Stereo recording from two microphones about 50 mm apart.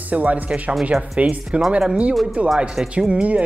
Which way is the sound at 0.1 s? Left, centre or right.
Right.